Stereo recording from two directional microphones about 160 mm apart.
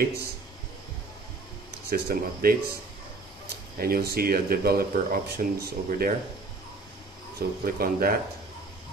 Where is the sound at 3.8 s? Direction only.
70° right (ahead or behind).